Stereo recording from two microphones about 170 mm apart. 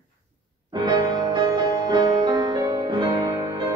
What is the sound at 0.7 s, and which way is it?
Music, 25° right (ahead or behind).